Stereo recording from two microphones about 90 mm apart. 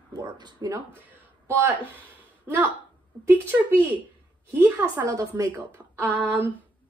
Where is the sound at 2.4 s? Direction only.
20° right (ahead or behind).